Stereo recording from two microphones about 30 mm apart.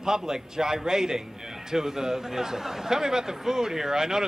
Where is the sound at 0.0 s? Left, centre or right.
Centre.